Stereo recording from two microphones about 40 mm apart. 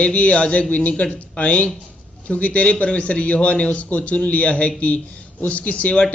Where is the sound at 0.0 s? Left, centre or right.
Left.